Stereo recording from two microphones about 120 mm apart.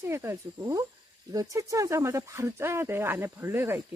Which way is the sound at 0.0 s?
20° right (ahead or behind).